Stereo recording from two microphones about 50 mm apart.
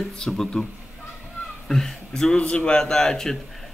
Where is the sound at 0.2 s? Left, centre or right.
Centre.